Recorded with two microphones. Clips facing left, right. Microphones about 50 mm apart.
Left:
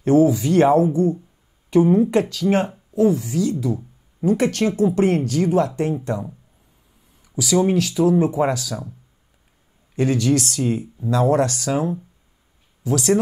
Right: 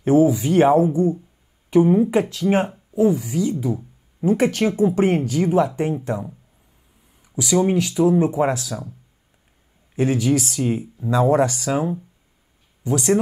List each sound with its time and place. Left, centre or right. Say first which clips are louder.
0.0 s speech: even; centre
3.5 s a sound: even; centre
4.6 s speech: even; centre
7.2 s a sound: left 1 dB; centre
7.6 s speech: right 1 dB; centre
9.9 s speech: even; centre